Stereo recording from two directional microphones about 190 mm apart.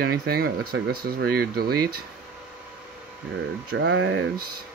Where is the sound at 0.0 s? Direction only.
55° right (ahead or behind).